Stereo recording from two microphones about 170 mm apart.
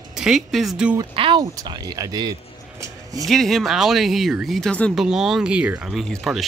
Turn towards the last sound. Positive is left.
turn(degrees=0)  # may be behind; listen again after turning